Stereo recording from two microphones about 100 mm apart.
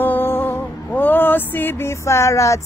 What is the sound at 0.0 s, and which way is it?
Music, 20° left (ahead or behind).